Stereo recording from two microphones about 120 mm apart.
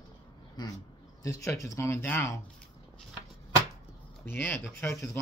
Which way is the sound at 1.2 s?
25° left (ahead or behind).